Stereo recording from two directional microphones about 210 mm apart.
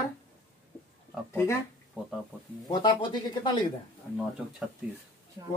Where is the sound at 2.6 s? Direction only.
20° left (ahead or behind).